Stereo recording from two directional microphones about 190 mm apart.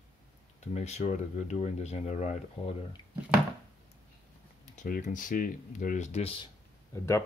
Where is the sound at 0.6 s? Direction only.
35° left (ahead or behind).